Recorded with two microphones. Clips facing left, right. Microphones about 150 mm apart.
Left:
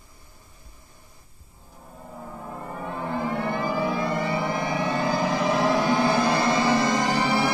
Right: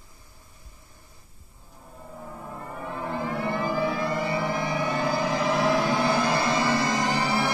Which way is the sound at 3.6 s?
15° left (ahead or behind).